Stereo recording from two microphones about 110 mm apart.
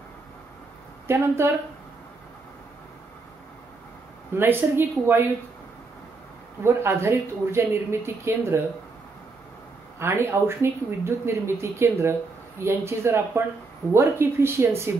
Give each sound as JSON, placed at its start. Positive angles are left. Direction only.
{"t": 1.0, "sound": "speech", "side_deg": -25}
{"t": 4.4, "sound": "speech", "side_deg": -20}
{"t": 6.6, "sound": "speech", "side_deg": -25}
{"t": 9.9, "sound": "speech", "side_deg": -25}